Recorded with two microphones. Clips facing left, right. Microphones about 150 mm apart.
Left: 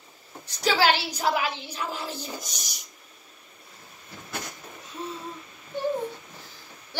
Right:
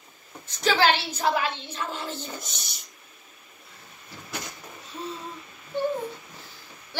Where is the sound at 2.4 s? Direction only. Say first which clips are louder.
Even; 25° right (ahead or behind).